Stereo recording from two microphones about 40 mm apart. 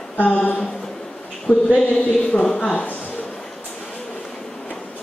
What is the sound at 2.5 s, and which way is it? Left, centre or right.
Speech, left.